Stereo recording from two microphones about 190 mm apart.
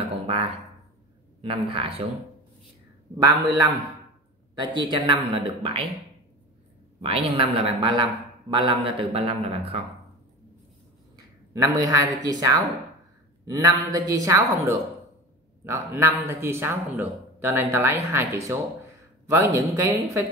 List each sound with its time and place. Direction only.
1.4 s a woman's voice: 30° right (ahead or behind)
3.3 s a woman's voice: 20° right (ahead or behind)
7.0 s a woman's voice: 30° right (ahead or behind)
11.5 s a man's voice: 15° right (ahead or behind)